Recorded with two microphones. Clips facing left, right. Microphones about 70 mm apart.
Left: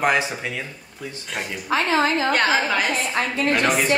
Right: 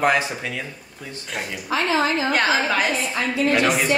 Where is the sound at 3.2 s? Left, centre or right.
Left.